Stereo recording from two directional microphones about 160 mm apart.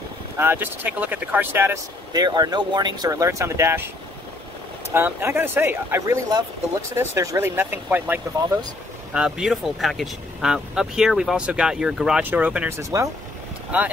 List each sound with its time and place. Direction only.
0.4 s speech: 15° right (ahead or behind)
4.9 s speech: 15° right (ahead or behind)